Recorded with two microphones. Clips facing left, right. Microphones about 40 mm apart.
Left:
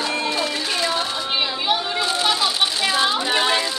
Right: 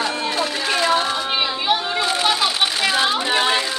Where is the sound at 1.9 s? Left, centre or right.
Right.